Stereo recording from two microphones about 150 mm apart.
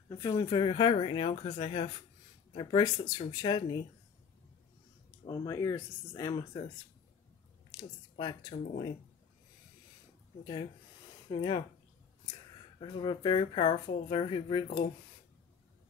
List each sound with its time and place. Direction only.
0.3 s speech: 30° left (ahead or behind)
5.2 s speech: 25° left (ahead or behind)
7.7 s speech: 30° left (ahead or behind)
8.5 s speech: 40° left (ahead or behind)
10.4 s speech: 30° left (ahead or behind)
12.9 s speech: 30° left (ahead or behind)